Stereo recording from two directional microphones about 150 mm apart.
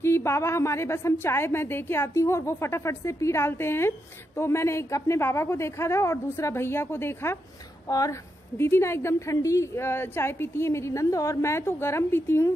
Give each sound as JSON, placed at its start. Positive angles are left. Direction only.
{"t": 0.0, "sound": "a woman's voice", "side_deg": 15}